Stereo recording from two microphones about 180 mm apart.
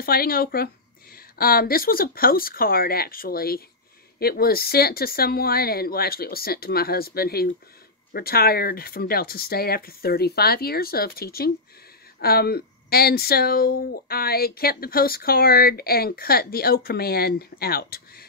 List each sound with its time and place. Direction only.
0.0 s speech: 55° left (ahead or behind)